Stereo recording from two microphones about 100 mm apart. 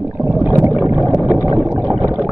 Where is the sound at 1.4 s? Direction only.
30° left (ahead or behind).